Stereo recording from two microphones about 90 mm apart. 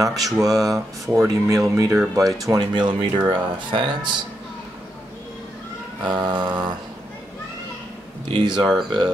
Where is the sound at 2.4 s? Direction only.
50° right (ahead or behind).